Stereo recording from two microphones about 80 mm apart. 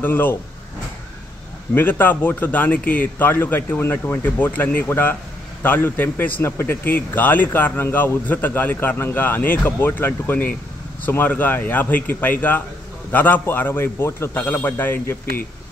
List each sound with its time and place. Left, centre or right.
0.0 s a man's voice: left
1.8 s a man's voice: left